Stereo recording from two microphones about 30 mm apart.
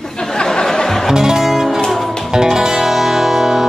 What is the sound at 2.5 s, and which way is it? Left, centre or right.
Music, centre.